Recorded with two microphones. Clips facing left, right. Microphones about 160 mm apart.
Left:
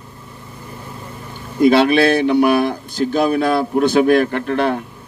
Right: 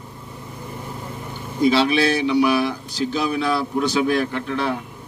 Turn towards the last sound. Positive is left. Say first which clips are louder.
# left 6 dB
turn(degrees=60)  # may be behind; listen again after turning